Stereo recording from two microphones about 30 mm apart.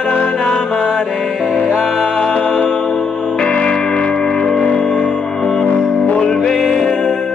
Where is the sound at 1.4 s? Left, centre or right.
Right.